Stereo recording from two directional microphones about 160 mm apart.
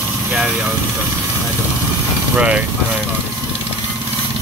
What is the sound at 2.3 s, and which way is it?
Speech, 5° right (ahead or behind).